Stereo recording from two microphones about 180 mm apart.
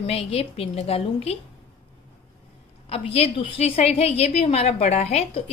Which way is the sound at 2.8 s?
30° left (ahead or behind).